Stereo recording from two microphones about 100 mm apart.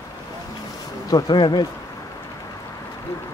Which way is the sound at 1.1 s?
45° left (ahead or behind).